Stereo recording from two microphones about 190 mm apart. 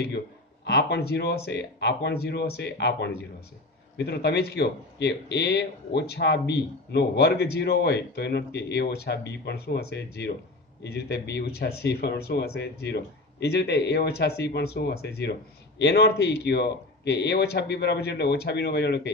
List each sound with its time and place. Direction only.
0.7 s speech: 60° left (ahead or behind)